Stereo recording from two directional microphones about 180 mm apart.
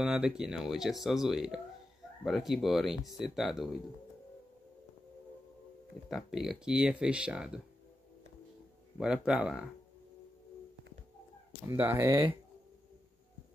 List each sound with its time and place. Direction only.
0.0 s speech: 5° right (ahead or behind)
6.0 s speech: centre (ahead or behind)
8.9 s speech: 5° right (ahead or behind)
11.6 s speech: 15° right (ahead or behind)